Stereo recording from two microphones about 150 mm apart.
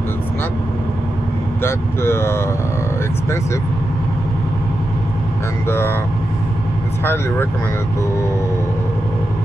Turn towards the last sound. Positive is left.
turn(degrees=15)  # may be behind; listen again after turning